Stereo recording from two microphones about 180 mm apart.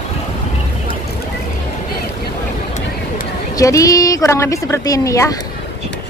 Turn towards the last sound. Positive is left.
turn(degrees=20)  # may be behind; listen again after turning